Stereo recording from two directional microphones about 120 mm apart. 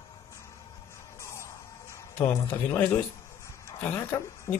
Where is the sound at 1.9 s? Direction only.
25° left (ahead or behind).